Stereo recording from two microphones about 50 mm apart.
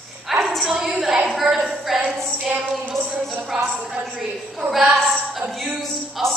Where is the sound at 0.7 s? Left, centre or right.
Centre.